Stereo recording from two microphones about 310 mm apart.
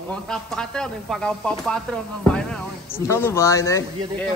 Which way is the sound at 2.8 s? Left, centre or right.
Centre.